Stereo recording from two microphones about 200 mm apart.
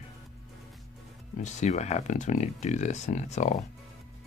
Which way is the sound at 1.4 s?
35° left (ahead or behind).